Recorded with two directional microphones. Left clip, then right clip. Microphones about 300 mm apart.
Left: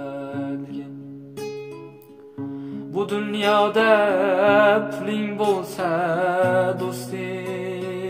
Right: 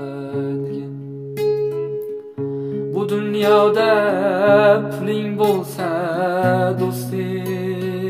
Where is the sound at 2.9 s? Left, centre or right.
Right.